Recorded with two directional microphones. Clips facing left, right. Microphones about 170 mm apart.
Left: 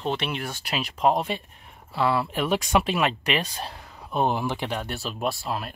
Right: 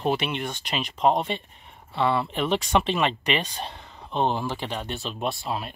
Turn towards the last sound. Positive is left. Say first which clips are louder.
# left 1 dB
turn(degrees=0)  # may be behind; listen again after turning